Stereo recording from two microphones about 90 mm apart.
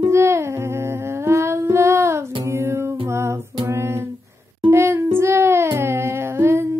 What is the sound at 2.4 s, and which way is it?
Music, 30° right (ahead or behind).